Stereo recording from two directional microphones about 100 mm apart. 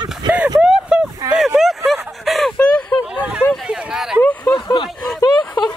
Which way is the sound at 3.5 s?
5° right (ahead or behind).